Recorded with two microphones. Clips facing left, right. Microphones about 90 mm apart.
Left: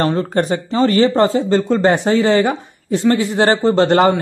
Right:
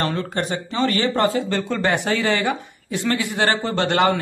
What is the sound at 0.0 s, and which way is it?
Speech, 40° left (ahead or behind).